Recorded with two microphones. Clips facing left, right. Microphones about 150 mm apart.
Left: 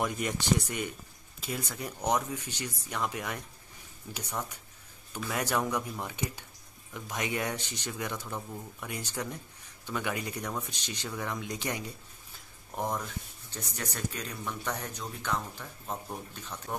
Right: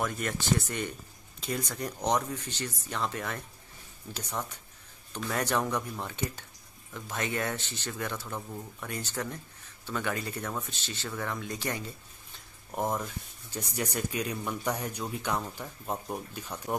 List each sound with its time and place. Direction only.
0.0 s speech: 15° left (ahead or behind)
12.7 s speech: 5° right (ahead or behind)